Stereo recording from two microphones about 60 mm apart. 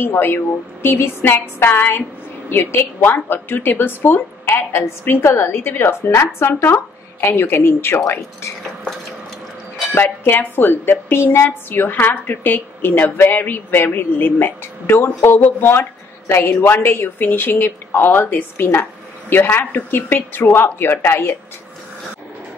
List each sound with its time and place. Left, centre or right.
0.0 s a woman's voice: left
9.9 s a woman's voice: left